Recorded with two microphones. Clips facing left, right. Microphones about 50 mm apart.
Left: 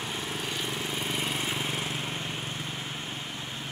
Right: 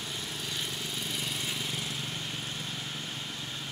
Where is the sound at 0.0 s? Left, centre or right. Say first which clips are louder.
Left 4 dB; left.